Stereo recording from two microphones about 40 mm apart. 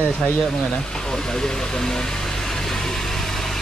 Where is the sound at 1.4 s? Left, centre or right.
Centre.